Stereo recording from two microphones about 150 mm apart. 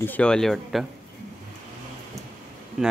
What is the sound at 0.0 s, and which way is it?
Speech, 10° left (ahead or behind).